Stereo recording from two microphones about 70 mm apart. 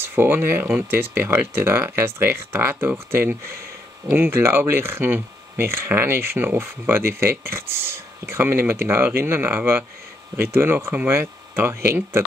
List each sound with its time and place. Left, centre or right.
0.0 s speech: right